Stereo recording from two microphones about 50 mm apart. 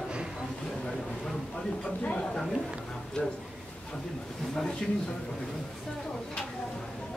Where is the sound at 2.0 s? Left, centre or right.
Left.